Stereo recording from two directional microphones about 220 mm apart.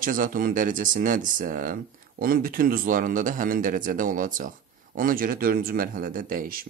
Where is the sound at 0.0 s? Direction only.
40° right (ahead or behind).